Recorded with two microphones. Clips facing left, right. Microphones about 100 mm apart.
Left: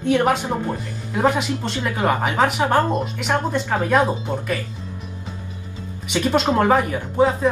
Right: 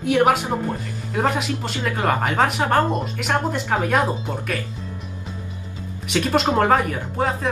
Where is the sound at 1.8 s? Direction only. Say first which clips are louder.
Left 1 dB; 30° left (ahead or behind).